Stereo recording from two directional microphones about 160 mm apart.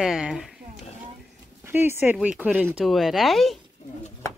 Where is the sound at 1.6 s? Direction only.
15° right (ahead or behind).